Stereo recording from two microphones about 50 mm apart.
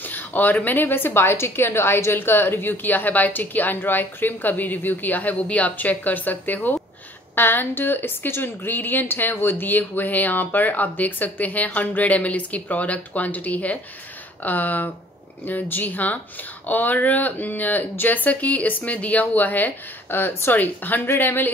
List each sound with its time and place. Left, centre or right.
0.0 s a woman's voice: left
20.5 s a woman's voice: left